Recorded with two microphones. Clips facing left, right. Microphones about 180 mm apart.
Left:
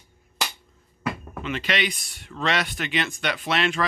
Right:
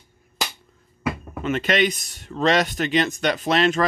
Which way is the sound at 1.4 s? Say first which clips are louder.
Right 6 dB; 45° right (ahead or behind).